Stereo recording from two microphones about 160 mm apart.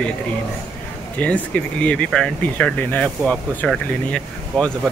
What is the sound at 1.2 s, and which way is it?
Speech, 10° left (ahead or behind).